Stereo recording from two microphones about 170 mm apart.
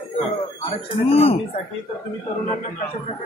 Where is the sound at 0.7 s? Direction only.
35° left (ahead or behind).